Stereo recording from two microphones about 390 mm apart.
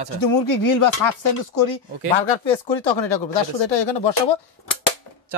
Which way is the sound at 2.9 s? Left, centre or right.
Left.